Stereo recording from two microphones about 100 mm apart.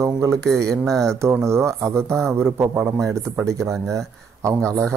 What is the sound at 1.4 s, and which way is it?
Speech, 30° right (ahead or behind).